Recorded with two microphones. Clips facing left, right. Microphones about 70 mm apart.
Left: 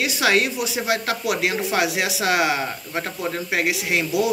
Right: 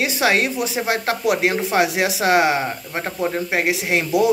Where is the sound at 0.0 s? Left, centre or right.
Right.